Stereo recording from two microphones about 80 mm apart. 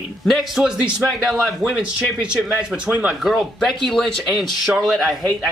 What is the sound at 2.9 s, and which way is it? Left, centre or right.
Speech, centre.